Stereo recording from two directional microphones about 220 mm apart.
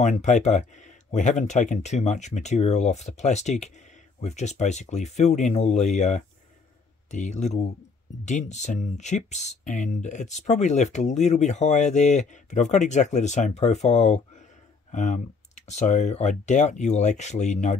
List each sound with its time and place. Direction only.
0.0 s speech: 35° left (ahead or behind)